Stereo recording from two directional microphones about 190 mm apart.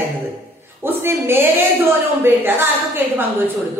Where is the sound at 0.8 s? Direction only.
10° right (ahead or behind).